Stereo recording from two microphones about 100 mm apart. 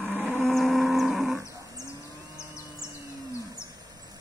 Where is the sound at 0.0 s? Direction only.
10° left (ahead or behind).